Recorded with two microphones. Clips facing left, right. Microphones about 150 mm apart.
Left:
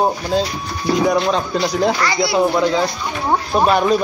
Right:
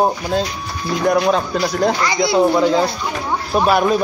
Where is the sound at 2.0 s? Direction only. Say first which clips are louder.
Right 1 dB; 20° right (ahead or behind).